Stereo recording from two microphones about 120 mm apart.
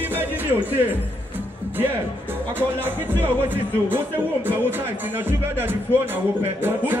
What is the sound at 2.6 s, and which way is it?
Speech, 15° right (ahead or behind).